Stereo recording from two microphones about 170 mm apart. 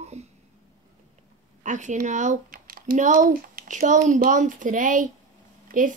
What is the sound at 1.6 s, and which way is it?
Speech, 45° right (ahead or behind).